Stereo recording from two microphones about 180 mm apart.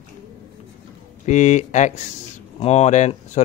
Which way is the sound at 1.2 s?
40° left (ahead or behind).